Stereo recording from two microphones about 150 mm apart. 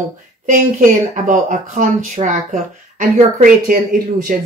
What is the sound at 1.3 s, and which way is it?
Speech, 60° right (ahead or behind).